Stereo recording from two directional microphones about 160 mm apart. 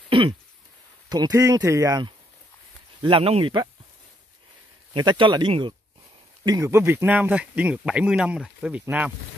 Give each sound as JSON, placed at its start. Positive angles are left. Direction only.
{"t": 0.1, "sound": "throat clearing", "side_deg": -35}
{"t": 1.0, "sound": "speech", "side_deg": -25}
{"t": 3.0, "sound": "speech", "side_deg": -35}
{"t": 4.9, "sound": "speech", "side_deg": -30}